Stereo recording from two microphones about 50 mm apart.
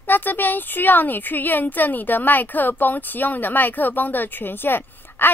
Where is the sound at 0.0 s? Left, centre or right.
Left.